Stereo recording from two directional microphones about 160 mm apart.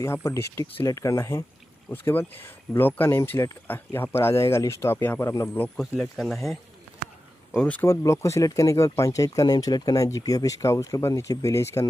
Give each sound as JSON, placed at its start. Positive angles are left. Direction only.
{"t": 0.0, "sound": "speech", "side_deg": 20}
{"t": 5.6, "sound": "speech", "side_deg": 5}